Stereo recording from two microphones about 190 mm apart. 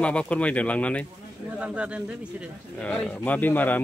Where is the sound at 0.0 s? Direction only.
5° left (ahead or behind).